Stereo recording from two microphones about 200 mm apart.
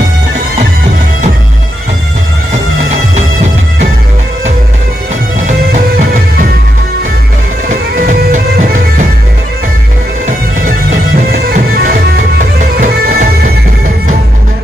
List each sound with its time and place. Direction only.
8.0 s music: 40° right (ahead or behind)
11.3 s music: 50° right (ahead or behind)